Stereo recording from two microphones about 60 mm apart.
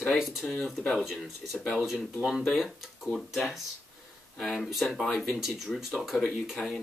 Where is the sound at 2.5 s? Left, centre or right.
Centre.